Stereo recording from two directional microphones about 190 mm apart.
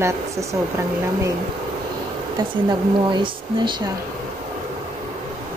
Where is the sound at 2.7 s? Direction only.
25° right (ahead or behind).